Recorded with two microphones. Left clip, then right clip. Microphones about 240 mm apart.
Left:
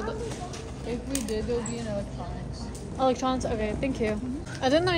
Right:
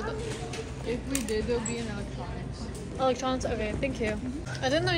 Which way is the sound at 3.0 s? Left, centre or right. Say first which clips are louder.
Left 2 dB; left.